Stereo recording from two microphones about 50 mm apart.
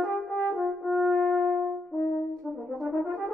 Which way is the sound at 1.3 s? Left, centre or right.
Right.